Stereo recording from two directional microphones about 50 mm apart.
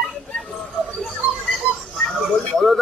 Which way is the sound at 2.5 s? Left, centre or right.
Centre.